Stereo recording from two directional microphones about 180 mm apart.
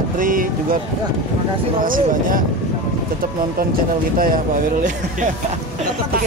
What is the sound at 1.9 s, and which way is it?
Speech, 50° right (ahead or behind).